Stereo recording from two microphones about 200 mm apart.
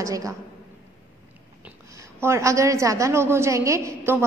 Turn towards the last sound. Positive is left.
turn(degrees=-15)  # may be behind; listen again after turning